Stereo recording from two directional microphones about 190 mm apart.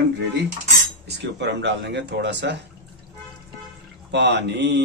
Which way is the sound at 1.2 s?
65° right (ahead or behind).